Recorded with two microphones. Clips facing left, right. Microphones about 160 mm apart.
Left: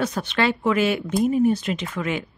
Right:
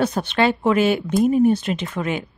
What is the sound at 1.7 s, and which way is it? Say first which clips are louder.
Speech: right 2 dB; 35° right (ahead or behind).